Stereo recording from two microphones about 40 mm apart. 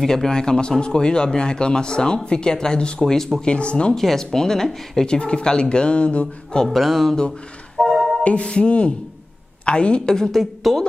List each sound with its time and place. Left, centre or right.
0.0 s speech: centre
3.9 s speech: centre
5.0 s speech: left
6.7 s music: centre
8.2 s music: left
8.5 s speech: left
10.1 s speech: centre
10.4 s a woman's voice: centre